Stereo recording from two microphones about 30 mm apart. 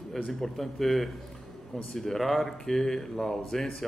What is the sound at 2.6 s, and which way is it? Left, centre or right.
A man's voice, centre.